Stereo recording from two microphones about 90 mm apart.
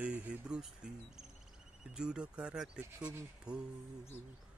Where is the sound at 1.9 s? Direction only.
10° right (ahead or behind).